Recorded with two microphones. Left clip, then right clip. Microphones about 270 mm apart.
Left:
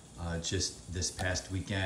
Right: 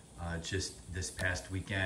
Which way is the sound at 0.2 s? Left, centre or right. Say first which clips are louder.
Left 3 dB; centre.